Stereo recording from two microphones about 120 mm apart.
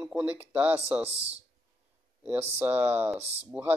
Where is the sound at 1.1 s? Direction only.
60° right (ahead or behind).